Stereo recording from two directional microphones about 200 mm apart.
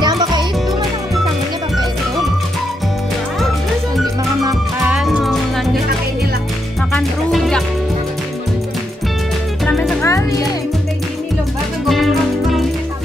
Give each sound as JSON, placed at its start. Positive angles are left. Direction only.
{"t": 0.0, "sound": "music", "side_deg": -20}
{"t": 4.8, "sound": "music", "side_deg": -5}
{"t": 6.9, "sound": "music", "side_deg": 0}
{"t": 9.7, "sound": "music", "side_deg": 5}
{"t": 11.9, "sound": "music", "side_deg": 0}